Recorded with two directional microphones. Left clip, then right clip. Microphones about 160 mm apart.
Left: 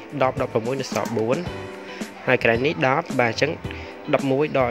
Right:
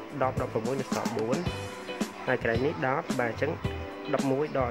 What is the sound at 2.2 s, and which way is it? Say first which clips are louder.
Speech: left 9 dB; 30° left (ahead or behind).